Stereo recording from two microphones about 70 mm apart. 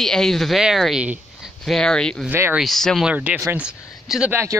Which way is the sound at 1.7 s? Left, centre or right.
Centre.